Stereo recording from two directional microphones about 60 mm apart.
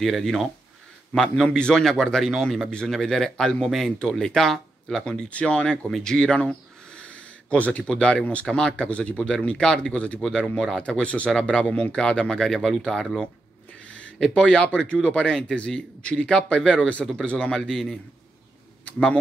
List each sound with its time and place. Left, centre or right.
0.0 s speech: centre
5.3 s speech: left
10.8 s speech: centre
13.8 s speech: left